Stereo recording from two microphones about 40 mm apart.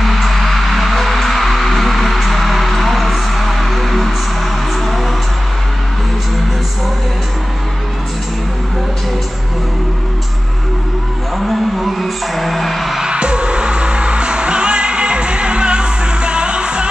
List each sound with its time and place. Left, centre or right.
0.0 s music: centre
11.3 s music: centre
13.0 s music: right